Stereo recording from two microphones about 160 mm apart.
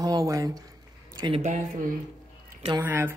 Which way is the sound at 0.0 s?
20° right (ahead or behind).